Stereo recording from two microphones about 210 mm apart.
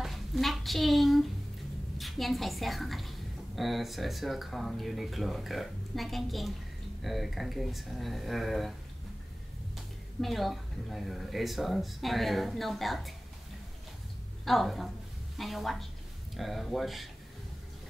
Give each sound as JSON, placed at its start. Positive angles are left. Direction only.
{"t": 0.0, "sound": "a sound", "side_deg": 0}
{"t": 2.0, "sound": "a woman's voice", "side_deg": 0}
{"t": 10.2, "sound": "a woman's voice", "side_deg": 0}
{"t": 14.4, "sound": "a woman's voice", "side_deg": 0}